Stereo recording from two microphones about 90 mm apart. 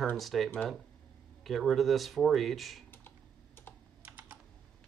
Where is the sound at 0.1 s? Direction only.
Centre (ahead or behind).